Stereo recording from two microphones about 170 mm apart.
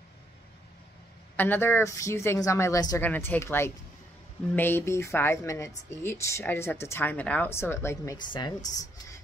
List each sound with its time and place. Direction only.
1.3 s a woman's voice: 10° left (ahead or behind)